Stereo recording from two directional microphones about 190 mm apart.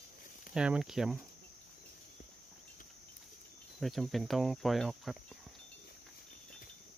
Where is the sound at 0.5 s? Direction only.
5° right (ahead or behind).